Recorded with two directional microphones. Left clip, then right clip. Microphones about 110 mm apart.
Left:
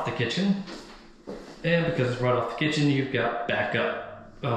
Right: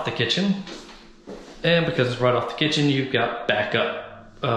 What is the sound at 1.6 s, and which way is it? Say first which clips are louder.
Speech: right 5 dB; 15° left (ahead or behind).